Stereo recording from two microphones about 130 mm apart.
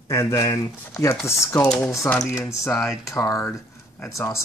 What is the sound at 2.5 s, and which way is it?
Speech, 20° left (ahead or behind).